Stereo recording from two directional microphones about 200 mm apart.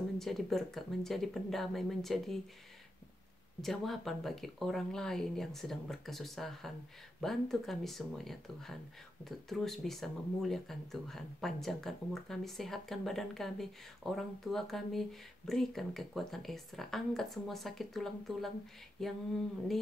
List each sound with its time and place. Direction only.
0.2 s speech: centre (ahead or behind)
3.6 s speech: centre (ahead or behind)